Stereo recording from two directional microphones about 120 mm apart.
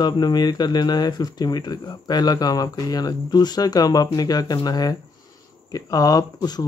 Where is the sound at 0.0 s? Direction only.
35° left (ahead or behind).